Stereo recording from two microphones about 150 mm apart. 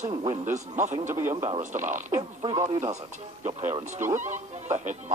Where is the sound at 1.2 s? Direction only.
20° right (ahead or behind).